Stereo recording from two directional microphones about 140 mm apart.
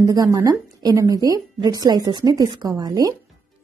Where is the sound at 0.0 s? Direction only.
25° right (ahead or behind).